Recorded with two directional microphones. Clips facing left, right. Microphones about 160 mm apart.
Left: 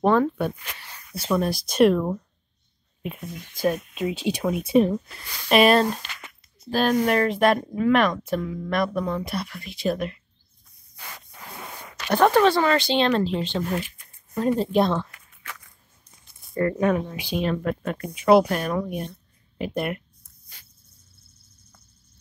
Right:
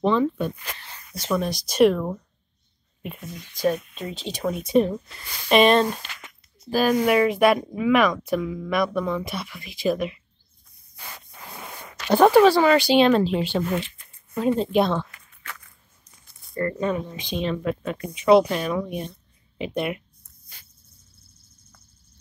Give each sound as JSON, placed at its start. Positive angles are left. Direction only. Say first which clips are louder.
{"t": 0.0, "sound": "speech", "louder": "left 1 dB", "side_deg": 60}
{"t": 1.3, "sound": "speech", "louder": "left 1 dB", "side_deg": 0}
{"t": 3.6, "sound": "speech", "louder": "even", "side_deg": 5}
{"t": 12.3, "sound": "speech", "louder": "right 4 dB", "side_deg": -5}
{"t": 17.1, "sound": "speech", "louder": "left 2 dB", "side_deg": 10}
{"t": 17.5, "sound": "speech", "louder": "even", "side_deg": 0}